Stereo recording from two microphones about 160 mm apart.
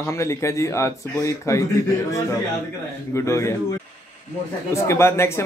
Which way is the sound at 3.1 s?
20° left (ahead or behind).